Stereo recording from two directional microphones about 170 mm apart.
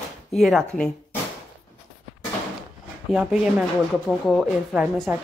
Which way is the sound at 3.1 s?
5° right (ahead or behind).